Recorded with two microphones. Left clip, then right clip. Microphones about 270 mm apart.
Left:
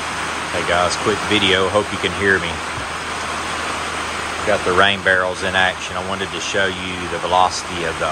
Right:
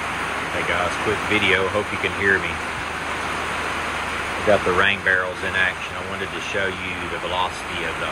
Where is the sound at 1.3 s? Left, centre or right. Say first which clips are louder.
Left 3 dB; centre.